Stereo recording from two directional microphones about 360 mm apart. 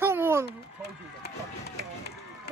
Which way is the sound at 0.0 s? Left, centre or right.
Centre.